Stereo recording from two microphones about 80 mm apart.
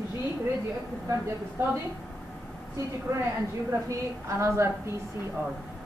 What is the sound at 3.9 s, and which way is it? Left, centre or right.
Speech, right.